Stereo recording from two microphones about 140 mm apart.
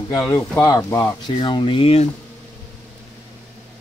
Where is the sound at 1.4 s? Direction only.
35° left (ahead or behind).